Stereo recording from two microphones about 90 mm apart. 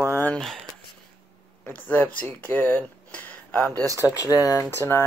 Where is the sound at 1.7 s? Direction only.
20° left (ahead or behind).